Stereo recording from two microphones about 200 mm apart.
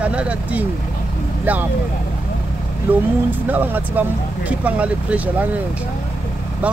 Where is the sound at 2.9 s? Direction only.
10° right (ahead or behind).